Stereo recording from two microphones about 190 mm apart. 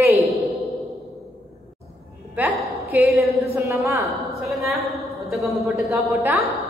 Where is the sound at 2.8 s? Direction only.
15° right (ahead or behind).